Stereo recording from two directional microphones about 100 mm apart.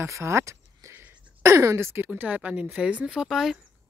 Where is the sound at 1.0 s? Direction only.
15° right (ahead or behind).